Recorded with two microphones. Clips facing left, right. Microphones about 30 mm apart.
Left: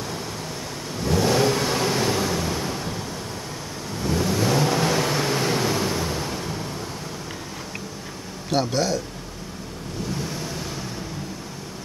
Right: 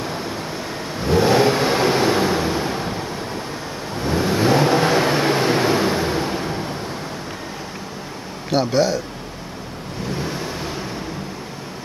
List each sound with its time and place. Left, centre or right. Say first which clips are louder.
0.9 s vehicle: right 5 dB; right
8.5 s speech: right 5 dB; centre
10.1 s vehicle: right 4 dB; right